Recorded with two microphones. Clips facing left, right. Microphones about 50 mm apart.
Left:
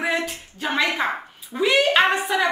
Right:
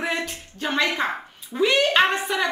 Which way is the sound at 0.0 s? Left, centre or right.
Centre.